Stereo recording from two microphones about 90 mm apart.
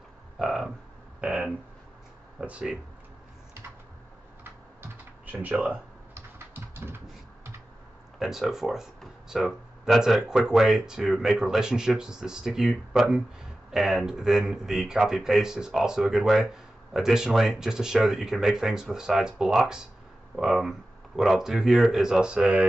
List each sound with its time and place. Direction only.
0.4 s a sound: 5° right (ahead or behind)
2.4 s speech: 10° right (ahead or behind)
5.2 s speech: 20° right (ahead or behind)
6.1 s typing: 25° right (ahead or behind)
8.2 s speech: 5° right (ahead or behind)